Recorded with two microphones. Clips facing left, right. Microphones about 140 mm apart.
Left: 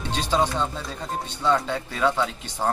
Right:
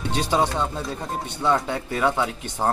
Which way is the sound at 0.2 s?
10° right (ahead or behind).